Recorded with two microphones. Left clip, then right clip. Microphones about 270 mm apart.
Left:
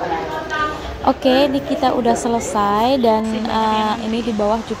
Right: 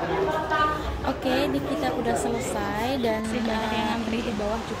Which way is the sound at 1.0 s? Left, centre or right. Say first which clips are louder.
Left 12 dB; left.